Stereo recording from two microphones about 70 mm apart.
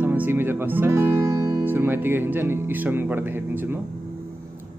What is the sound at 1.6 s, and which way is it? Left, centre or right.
Speech, right.